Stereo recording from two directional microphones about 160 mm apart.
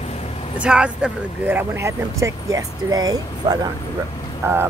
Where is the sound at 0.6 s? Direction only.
5° right (ahead or behind).